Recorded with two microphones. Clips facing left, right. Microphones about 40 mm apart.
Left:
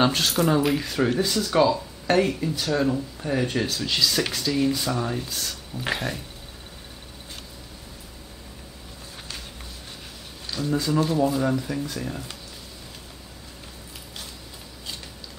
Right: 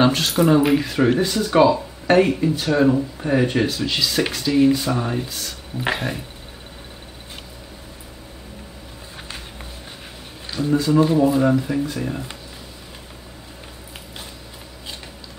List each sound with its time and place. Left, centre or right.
0.1 s speech: centre; by 3.6 s right
3.6 s speech: centre
10.4 s a sound: centre
11.0 s speech: centre